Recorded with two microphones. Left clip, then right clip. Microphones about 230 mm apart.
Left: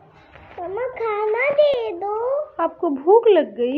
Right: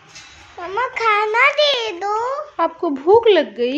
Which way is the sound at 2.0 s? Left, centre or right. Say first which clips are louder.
Right 3 dB; right.